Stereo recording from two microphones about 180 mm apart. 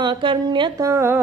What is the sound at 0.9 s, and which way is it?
Speech, 15° right (ahead or behind).